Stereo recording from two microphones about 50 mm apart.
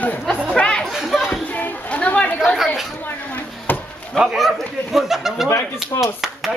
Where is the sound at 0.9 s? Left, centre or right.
Centre.